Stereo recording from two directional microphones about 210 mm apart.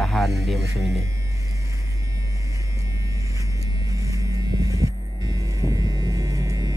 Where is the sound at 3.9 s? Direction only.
15° right (ahead or behind).